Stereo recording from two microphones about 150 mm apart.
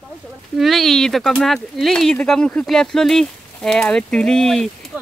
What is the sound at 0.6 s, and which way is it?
Speech, centre (ahead or behind).